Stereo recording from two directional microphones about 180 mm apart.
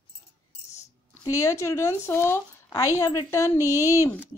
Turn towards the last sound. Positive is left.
turn(degrees=15)  # may be behind; listen again after turning